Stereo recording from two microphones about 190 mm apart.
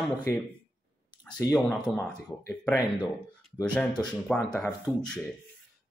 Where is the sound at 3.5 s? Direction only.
20° left (ahead or behind).